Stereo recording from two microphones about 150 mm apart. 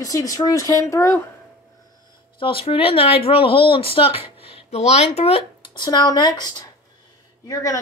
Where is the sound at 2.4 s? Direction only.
35° left (ahead or behind).